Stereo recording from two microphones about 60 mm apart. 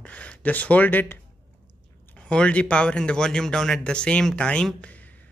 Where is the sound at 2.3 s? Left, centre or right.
Centre.